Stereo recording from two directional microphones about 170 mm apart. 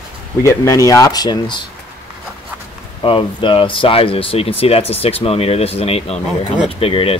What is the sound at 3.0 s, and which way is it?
Speech, 30° left (ahead or behind).